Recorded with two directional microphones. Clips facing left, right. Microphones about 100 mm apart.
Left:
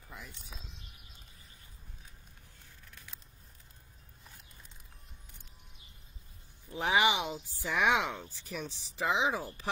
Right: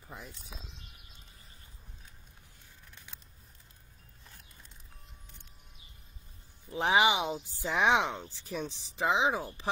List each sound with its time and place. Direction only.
6.7 s speech: 20° right (ahead or behind)